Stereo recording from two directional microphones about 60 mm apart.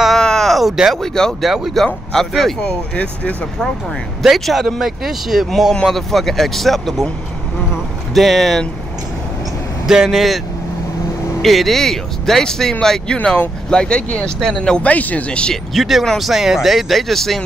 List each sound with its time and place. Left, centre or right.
0.2 s a sound: centre
1.0 s speech: centre
1.4 s speech: centre
4.2 s speech: centre
8.1 s speech: centre
9.8 s speech: centre
11.4 s speech: centre
15.5 s speech: centre